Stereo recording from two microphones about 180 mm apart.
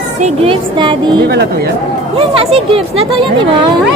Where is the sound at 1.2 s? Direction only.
65° right (ahead or behind).